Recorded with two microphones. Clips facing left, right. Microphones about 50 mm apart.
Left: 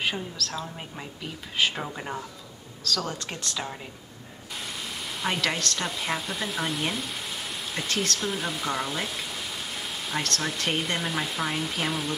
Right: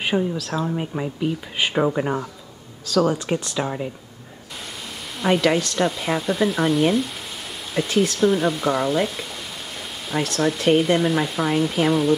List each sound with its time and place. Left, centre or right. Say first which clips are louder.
0.0 s speech: right 8 dB; centre
5.2 s speech: right 9 dB; centre